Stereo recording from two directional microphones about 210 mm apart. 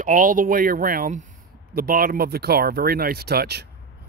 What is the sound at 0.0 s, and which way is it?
Speech, 40° right (ahead or behind).